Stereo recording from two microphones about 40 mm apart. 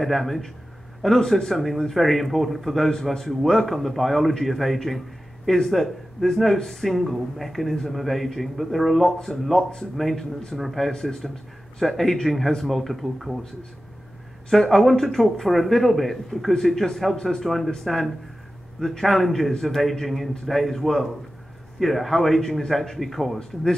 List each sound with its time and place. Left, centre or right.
0.0 s a man's voice: centre
10.9 s a man's voice: centre
14.5 s a man's voice: centre